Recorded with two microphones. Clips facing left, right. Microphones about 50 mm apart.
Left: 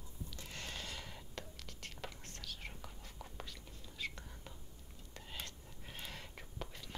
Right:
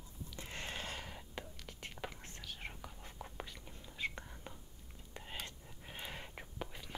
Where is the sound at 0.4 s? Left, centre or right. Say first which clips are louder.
Right 4 dB; right.